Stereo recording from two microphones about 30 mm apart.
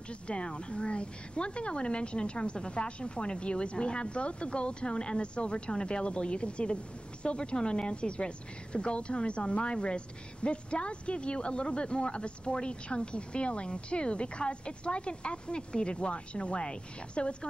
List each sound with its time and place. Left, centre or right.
0.3 s speech: left
5.7 s speech: left